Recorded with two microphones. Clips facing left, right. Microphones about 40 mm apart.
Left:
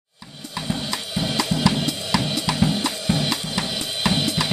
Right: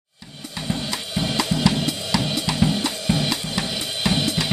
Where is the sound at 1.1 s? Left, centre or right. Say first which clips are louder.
Right 1 dB; centre.